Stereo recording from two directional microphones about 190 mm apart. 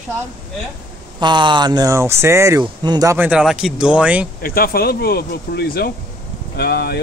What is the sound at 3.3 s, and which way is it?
Speech, 5° right (ahead or behind).